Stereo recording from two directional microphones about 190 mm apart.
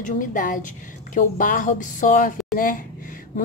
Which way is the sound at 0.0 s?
45° left (ahead or behind).